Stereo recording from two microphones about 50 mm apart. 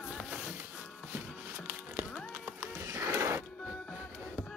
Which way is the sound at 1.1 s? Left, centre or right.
Right.